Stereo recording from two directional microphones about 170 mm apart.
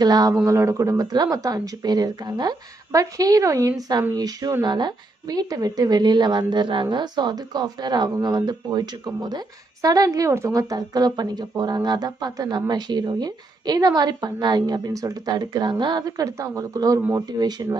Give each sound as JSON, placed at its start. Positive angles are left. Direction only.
{"t": 0.0, "sound": "speech", "side_deg": -25}